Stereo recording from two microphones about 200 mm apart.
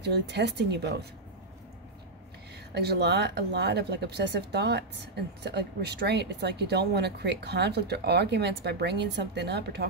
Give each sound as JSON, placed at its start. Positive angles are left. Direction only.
{"t": 0.0, "sound": "speech", "side_deg": -60}
{"t": 2.7, "sound": "speech", "side_deg": -55}